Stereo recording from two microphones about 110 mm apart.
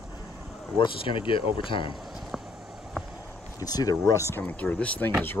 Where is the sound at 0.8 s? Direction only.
50° left (ahead or behind).